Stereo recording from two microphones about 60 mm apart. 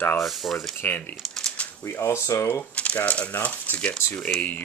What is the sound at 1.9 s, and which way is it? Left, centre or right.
Speech, left.